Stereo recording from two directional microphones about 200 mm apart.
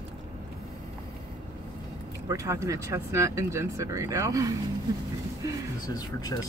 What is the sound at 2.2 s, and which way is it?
Speech, 15° right (ahead or behind).